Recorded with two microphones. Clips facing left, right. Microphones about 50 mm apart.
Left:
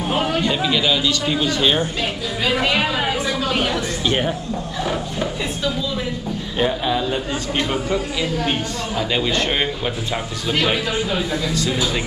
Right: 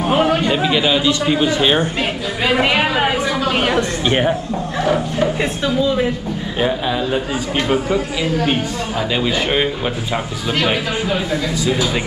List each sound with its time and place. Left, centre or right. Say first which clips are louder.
0.1 s a man's voice: right 5 dB; right
2.4 s a sound: right 4 dB; right
6.6 s a man's voice: right 1 dB; centre
11.5 s a man's voice: right 4 dB; centre